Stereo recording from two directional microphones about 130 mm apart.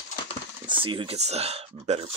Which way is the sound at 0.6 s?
40° right (ahead or behind).